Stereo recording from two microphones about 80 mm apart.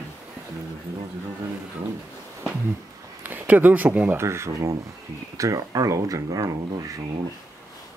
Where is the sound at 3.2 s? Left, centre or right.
Right.